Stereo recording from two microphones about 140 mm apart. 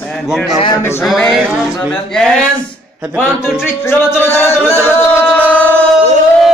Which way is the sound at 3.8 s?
15° left (ahead or behind).